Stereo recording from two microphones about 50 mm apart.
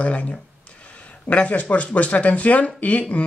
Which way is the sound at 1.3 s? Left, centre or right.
Left.